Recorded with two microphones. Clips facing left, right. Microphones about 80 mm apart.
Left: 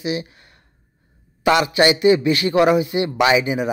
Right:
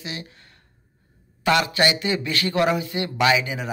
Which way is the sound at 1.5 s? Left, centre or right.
Centre.